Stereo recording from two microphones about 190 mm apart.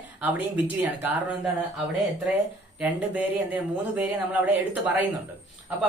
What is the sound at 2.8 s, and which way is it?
Speech, 10° right (ahead or behind).